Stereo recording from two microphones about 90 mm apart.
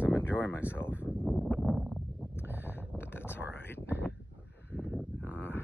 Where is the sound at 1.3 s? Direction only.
Centre (ahead or behind).